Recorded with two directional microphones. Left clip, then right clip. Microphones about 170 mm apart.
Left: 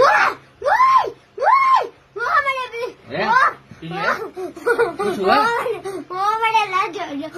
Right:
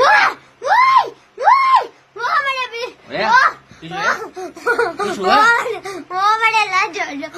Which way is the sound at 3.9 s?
15° right (ahead or behind).